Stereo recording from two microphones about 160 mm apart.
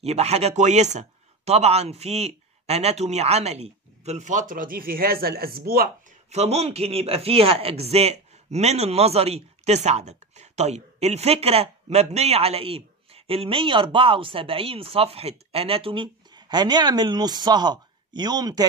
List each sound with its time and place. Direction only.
0.0 s speech: 40° right (ahead or behind); by 5.9 s 70° right (ahead or behind)
6.3 s speech: 40° right (ahead or behind); by 18.7 s 25° right (ahead or behind)